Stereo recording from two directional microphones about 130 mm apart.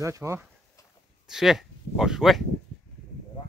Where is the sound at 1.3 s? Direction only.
Centre (ahead or behind).